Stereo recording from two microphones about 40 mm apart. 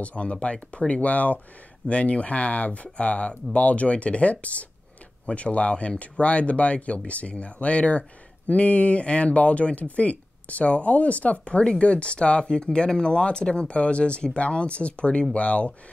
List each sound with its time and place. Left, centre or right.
0.0 s speech: left